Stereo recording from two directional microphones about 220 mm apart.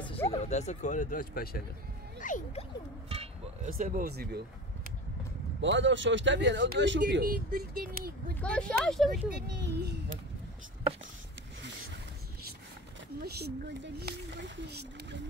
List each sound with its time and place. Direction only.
0.3 s speech: 30° left (ahead or behind)
3.1 s a sound: 25° right (ahead or behind)
3.7 s speech: 40° right (ahead or behind)
5.6 s speech: 55° right (ahead or behind)
8.4 s speech: 5° left (ahead or behind)
9.6 s speech: 50° right (ahead or behind)
13.2 s speech: 50° right (ahead or behind)